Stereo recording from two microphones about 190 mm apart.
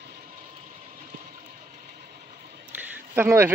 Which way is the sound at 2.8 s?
10° right (ahead or behind).